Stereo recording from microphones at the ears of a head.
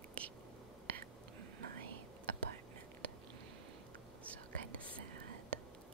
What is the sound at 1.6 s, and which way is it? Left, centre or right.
Whispering, right.